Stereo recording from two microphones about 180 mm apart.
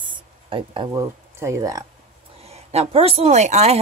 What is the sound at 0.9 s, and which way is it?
Speech, 15° right (ahead or behind).